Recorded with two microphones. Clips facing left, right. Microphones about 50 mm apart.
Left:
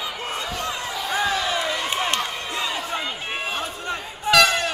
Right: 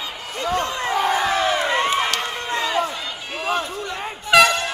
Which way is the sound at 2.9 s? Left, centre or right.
Left.